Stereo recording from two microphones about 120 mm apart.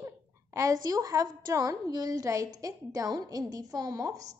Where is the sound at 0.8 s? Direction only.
30° right (ahead or behind).